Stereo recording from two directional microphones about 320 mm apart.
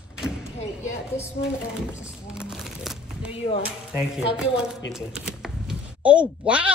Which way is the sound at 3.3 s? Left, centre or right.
Centre.